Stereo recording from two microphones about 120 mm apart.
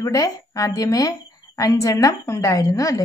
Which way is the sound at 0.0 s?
30° left (ahead or behind).